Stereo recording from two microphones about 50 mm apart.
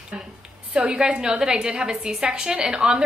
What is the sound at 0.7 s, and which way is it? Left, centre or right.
A woman's voice, centre.